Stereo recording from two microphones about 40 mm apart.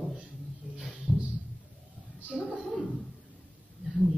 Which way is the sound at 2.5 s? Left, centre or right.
Centre.